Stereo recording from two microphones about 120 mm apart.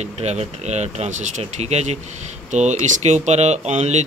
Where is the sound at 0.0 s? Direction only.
65° right (ahead or behind).